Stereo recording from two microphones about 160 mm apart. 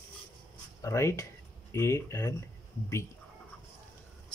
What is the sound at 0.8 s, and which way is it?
Speech, 20° left (ahead or behind).